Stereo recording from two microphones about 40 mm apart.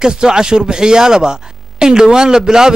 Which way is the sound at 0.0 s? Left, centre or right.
Centre.